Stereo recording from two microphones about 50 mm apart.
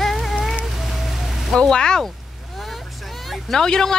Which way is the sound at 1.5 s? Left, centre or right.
Centre.